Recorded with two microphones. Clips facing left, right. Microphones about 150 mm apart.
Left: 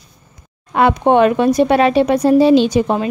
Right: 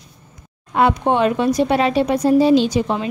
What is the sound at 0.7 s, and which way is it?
Speech, 65° left (ahead or behind).